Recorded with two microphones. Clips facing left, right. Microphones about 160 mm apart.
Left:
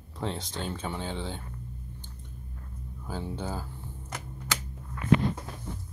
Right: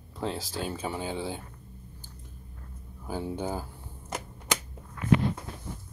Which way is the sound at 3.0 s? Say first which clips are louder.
Right 3 dB; 15° right (ahead or behind).